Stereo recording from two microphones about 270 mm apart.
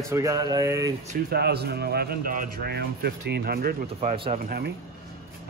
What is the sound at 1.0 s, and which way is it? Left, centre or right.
A man's voice, right.